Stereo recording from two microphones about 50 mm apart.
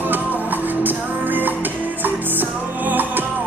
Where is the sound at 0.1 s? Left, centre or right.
Right.